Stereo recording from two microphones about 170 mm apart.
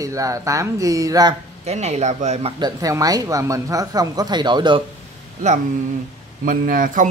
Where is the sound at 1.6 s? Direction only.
40° right (ahead or behind).